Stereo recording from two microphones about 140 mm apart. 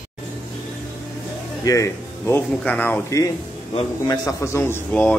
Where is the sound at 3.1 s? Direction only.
20° left (ahead or behind).